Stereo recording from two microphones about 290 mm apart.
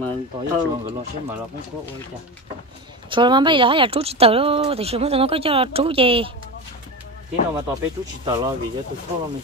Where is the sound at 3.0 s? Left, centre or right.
Centre.